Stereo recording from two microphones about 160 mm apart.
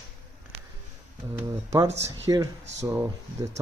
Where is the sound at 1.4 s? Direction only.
20° right (ahead or behind).